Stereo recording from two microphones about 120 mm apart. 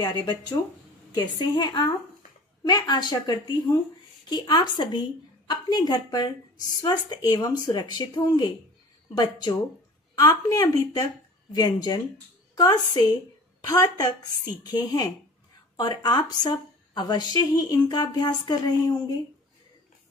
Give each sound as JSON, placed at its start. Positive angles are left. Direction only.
{"t": 0.0, "sound": "a woman's voice", "side_deg": 35}